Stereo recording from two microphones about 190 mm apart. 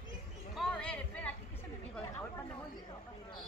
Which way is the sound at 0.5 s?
5° left (ahead or behind).